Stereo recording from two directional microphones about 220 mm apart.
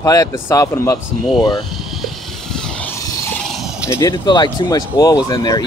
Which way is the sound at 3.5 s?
Centre (ahead or behind).